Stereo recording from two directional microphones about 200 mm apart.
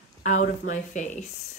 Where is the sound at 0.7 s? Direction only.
40° left (ahead or behind).